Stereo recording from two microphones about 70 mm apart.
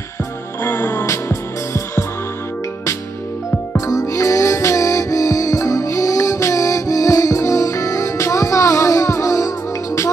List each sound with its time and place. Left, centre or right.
0.6 s music: left
1.0 s music: left
3.8 s music: left